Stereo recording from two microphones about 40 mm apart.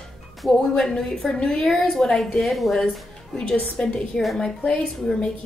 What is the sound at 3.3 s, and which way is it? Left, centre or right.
Speech, left.